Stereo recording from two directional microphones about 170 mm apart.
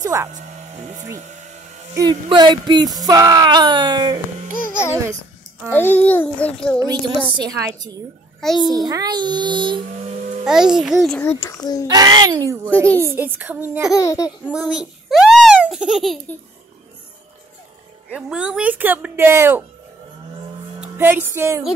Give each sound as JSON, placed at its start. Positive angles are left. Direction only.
{"t": 0.0, "sound": "speech", "side_deg": -20}
{"t": 0.3, "sound": "music", "side_deg": -45}
{"t": 2.0, "sound": "speech", "side_deg": -25}
{"t": 5.7, "sound": "a child's voice", "side_deg": 10}
{"t": 6.8, "sound": "speech", "side_deg": -25}
{"t": 10.4, "sound": "a child's voice", "side_deg": -5}
{"t": 11.1, "sound": "a child's voice", "side_deg": 15}
{"t": 11.9, "sound": "speech", "side_deg": -25}
{"t": 12.7, "sound": "a child's voice", "side_deg": 10}
{"t": 13.1, "sound": "a woman's voice", "side_deg": -10}
{"t": 13.9, "sound": "a child's voice", "side_deg": 20}
{"t": 14.4, "sound": "speech", "side_deg": -5}
{"t": 18.1, "sound": "a woman's voice", "side_deg": -5}
{"t": 20.8, "sound": "speech", "side_deg": -10}